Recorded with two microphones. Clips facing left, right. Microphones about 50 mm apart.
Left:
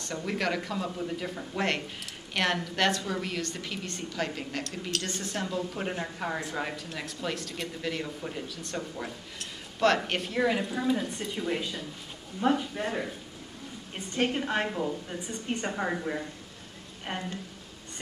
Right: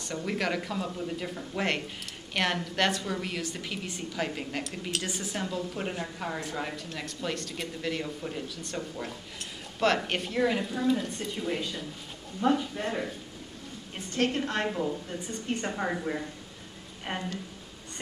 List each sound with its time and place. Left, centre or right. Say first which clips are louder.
0.0 s a woman's voice: even; centre